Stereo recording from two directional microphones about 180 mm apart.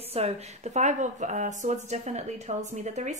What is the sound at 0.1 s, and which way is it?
Speech, 35° right (ahead or behind).